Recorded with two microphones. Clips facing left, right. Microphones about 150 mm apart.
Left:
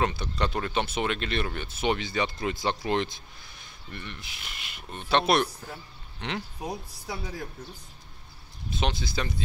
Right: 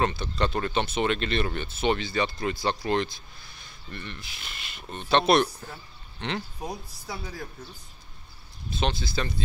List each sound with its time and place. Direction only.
0.0 s speech: 15° left (ahead or behind)
8.7 s speech: 15° left (ahead or behind)